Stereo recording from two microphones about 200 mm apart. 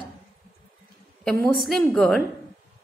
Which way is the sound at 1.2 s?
Centre (ahead or behind).